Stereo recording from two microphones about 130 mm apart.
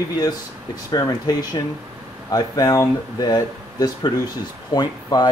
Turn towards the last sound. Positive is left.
turn(degrees=30)  # may be behind; listen again after turning